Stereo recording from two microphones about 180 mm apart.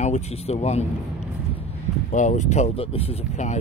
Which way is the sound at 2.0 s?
45° left (ahead or behind).